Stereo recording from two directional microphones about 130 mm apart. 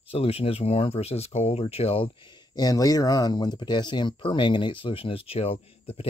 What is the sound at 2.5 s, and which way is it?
Speech, 30° left (ahead or behind).